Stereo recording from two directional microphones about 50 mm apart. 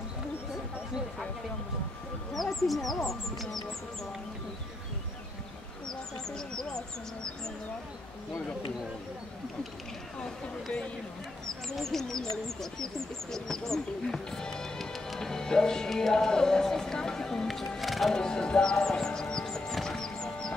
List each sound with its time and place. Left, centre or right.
2.3 s bird: centre
5.9 s speech: centre
10.2 s speech: centre
18.1 s music: centre